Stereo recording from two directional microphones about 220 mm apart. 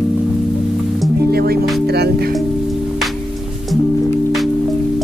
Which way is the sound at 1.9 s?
45° right (ahead or behind).